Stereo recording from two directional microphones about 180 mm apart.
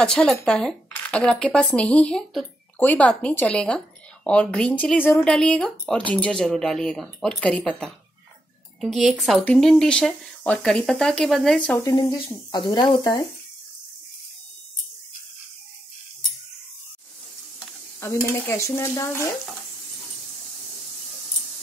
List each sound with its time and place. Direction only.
0.0 s speech: 5° left (ahead or behind)
11.8 s speech: 20° left (ahead or behind)
18.0 s stir: 15° left (ahead or behind)